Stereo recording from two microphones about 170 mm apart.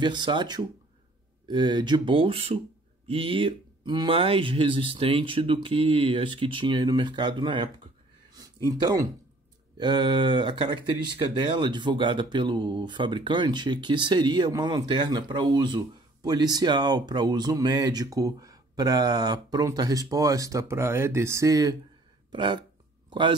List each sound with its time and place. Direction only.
0.0 s speech: 25° right (ahead or behind)
22.3 s hiccup: 30° right (ahead or behind)